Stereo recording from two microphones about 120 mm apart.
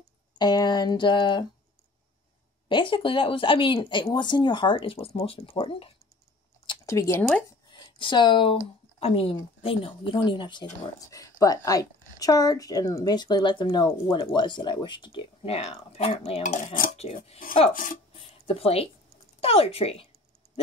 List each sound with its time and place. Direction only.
0.4 s speech: 35° left (ahead or behind)
2.7 s speech: 45° left (ahead or behind)
6.9 s speech: 25° left (ahead or behind)
7.4 s speech: 40° left (ahead or behind)
11.1 s speech: 30° left (ahead or behind)
15.4 s speech: 55° left (ahead or behind)
16.4 s dishes: 70° left (ahead or behind)
18.1 s a sound: 50° left (ahead or behind)
19.4 s speech: 55° left (ahead or behind)